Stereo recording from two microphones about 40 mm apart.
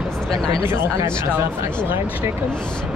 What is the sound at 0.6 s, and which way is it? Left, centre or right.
Speech, right.